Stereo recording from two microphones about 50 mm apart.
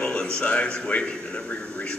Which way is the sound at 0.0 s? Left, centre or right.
Centre.